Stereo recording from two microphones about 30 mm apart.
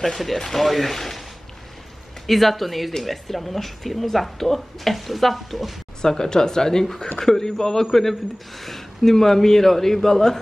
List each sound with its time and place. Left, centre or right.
0.0 s speech: centre
2.2 s speech: centre
6.0 s speech: left